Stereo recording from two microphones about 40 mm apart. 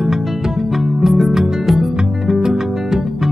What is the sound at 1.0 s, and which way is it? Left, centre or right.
Music, centre.